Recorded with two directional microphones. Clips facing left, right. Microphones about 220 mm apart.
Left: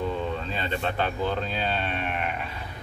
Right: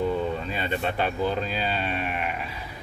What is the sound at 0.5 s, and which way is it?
Speech, 10° right (ahead or behind).